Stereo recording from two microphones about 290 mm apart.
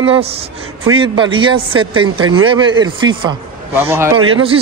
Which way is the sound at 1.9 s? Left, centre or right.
Right.